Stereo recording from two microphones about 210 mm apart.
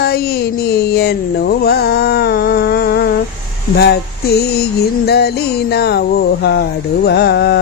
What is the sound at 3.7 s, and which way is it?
Speech, 50° left (ahead or behind).